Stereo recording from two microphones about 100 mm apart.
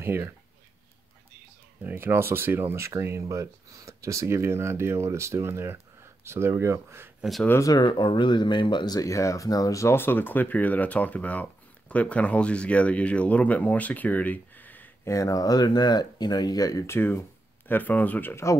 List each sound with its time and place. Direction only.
0.0 s speech: 25° right (ahead or behind)
1.8 s speech: 20° right (ahead or behind)
7.8 s speech: 55° left (ahead or behind); by 14.9 s 20° left (ahead or behind)
15.0 s speech: 35° left (ahead or behind)